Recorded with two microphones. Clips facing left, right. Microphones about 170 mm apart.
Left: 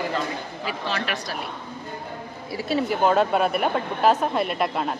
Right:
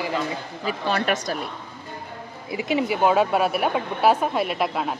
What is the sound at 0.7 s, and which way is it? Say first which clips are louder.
Speech: right 5 dB; 45° right (ahead or behind).